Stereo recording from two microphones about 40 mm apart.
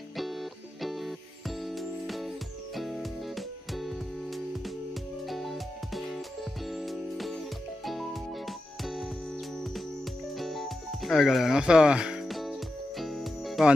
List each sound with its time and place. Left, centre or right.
0.2 s music: centre
10.3 s music: centre
11.5 s speech: centre
12.3 s music: centre